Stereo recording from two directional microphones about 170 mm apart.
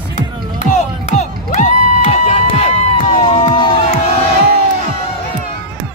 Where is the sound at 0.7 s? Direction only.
40° left (ahead or behind).